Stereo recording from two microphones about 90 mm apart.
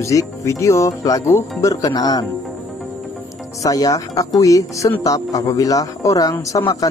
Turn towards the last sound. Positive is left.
turn(degrees=50)  # may be behind; listen again after turning